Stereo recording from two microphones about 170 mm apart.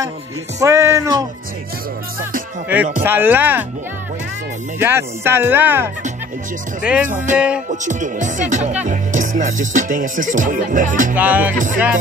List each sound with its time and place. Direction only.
0.6 s speech: 15° right (ahead or behind)
2.7 s speech: 10° right (ahead or behind)
4.7 s speech: 15° right (ahead or behind)
7.8 s music: 45° right (ahead or behind)
11.1 s speech: 10° right (ahead or behind)
11.5 s music: 50° right (ahead or behind)